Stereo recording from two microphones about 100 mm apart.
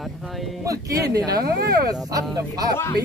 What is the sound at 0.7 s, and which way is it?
Speech, 35° right (ahead or behind).